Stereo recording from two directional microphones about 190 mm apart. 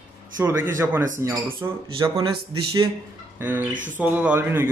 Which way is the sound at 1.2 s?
20° right (ahead or behind).